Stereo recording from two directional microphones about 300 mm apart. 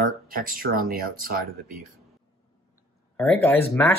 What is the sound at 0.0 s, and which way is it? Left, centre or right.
Speech, right.